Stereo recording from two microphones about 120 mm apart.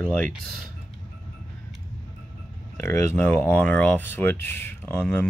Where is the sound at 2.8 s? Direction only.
20° left (ahead or behind).